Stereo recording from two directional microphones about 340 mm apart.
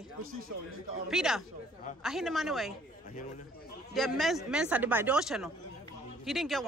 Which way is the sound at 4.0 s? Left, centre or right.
Centre.